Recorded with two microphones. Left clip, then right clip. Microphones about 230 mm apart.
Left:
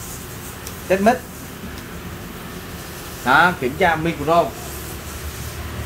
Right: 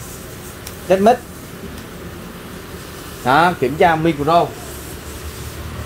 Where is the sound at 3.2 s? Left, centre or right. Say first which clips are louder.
Right 1 dB; right.